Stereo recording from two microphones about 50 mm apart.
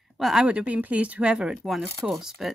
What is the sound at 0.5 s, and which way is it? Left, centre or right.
Speech, right.